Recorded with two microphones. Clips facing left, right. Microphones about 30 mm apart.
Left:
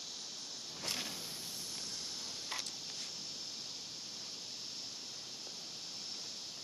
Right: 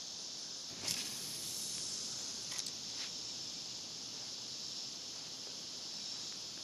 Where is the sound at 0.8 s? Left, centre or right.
Centre.